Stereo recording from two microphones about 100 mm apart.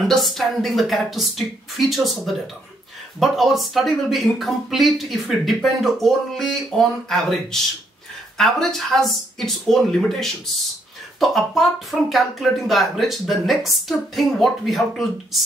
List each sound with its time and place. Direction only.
0.0 s speech: centre (ahead or behind)
8.4 s speech: 5° left (ahead or behind)